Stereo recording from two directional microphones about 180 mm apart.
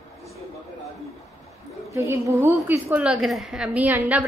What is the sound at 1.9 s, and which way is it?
A woman's voice, 15° right (ahead or behind).